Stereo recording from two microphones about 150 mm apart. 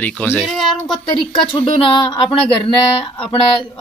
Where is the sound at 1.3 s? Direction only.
35° left (ahead or behind).